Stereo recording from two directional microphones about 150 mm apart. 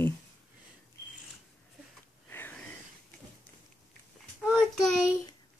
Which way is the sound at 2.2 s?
15° left (ahead or behind).